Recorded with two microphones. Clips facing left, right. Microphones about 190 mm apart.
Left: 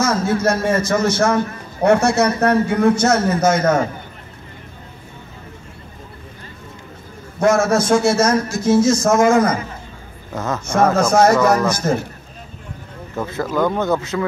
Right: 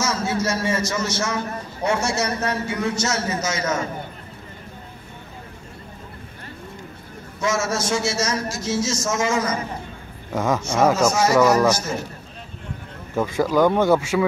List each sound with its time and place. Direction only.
0.0 s a man's voice: 55° left (ahead or behind)
7.3 s a man's voice: 55° left (ahead or behind)
10.3 s speech: 10° right (ahead or behind)
11.0 s a man's voice: 55° left (ahead or behind)
13.1 s speech: 10° right (ahead or behind)